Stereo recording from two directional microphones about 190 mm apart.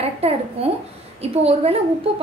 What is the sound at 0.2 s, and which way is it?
A woman's voice, 30° right (ahead or behind).